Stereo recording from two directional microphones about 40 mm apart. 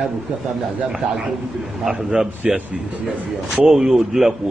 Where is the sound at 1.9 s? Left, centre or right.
Right.